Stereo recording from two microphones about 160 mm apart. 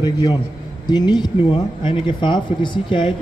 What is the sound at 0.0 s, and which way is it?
A man's voice, 25° left (ahead or behind).